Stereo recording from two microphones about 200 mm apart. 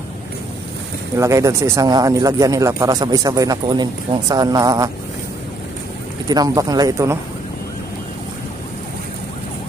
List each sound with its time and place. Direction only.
1.1 s speech: 15° right (ahead or behind)
6.2 s speech: 20° right (ahead or behind)